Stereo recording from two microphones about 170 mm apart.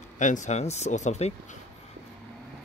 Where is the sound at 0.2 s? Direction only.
45° left (ahead or behind).